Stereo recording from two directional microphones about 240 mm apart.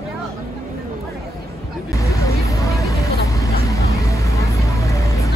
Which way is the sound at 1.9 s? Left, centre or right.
Centre.